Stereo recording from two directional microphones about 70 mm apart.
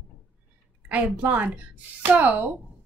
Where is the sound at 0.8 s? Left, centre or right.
Right.